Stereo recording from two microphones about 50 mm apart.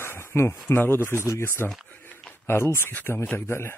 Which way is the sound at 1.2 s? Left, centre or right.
Left.